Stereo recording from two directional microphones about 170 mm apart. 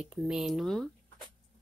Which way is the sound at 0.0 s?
5° right (ahead or behind).